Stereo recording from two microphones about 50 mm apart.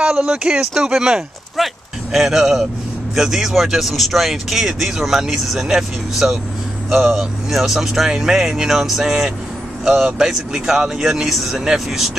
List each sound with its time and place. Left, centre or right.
0.0 s speech: centre
1.6 s speech: centre